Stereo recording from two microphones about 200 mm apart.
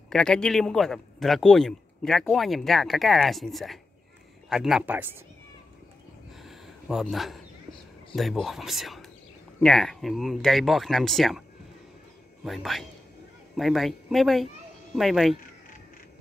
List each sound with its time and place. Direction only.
0.1 s a man's voice: 5° left (ahead or behind)
6.4 s a sound: centre (ahead or behind)
8.2 s a man's voice: centre (ahead or behind)
12.4 s a man's voice: centre (ahead or behind)